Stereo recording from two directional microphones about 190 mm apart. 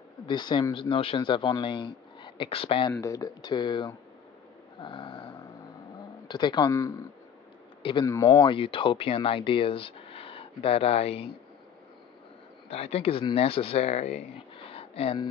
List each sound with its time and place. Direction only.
0.3 s speech: 25° left (ahead or behind)
2.9 s speech: 15° left (ahead or behind)
12.6 s speech: 30° left (ahead or behind)
14.7 s a sound: 30° left (ahead or behind)